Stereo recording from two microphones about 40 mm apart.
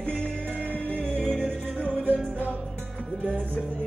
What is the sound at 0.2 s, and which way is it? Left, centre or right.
Music, left.